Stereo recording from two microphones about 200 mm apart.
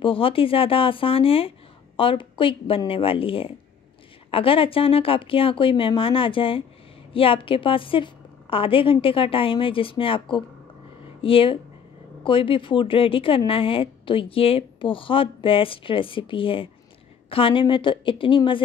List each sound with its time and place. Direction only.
0.0 s speech: 25° left (ahead or behind)